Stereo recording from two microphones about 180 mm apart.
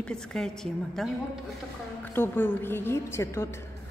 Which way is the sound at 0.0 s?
5° left (ahead or behind).